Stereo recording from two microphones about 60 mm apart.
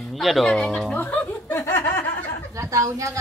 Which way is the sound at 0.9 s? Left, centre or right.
Left.